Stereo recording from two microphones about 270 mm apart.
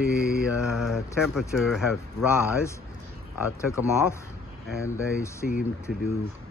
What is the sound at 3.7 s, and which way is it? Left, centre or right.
Speech, centre.